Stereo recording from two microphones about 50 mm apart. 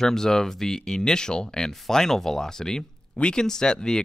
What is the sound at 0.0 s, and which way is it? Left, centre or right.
Speech, centre.